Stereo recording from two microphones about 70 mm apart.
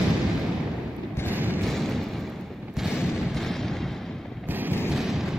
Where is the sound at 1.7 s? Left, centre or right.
Centre.